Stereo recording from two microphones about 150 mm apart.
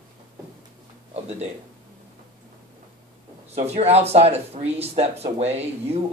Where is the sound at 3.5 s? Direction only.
45° right (ahead or behind).